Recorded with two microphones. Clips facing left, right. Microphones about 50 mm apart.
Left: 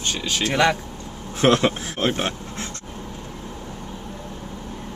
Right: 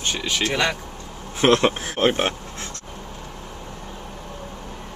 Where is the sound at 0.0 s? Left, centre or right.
Centre.